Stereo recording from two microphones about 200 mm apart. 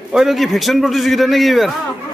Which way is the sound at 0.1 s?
Centre (ahead or behind).